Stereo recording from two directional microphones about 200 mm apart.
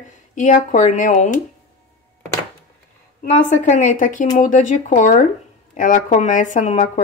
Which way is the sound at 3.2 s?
40° left (ahead or behind).